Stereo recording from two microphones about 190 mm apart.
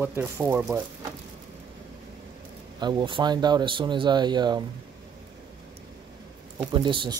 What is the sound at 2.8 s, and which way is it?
Speech, 25° right (ahead or behind).